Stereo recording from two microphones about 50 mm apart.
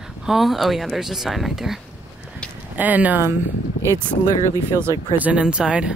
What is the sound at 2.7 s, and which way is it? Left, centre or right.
Speech, right.